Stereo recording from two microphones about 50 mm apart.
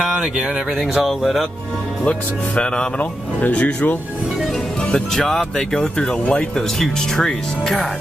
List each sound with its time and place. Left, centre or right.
0.1 s speech: centre
0.7 s a sound: centre
2.0 s speech: centre
3.0 s speech: left
5.1 s speech: centre
5.9 s speech: centre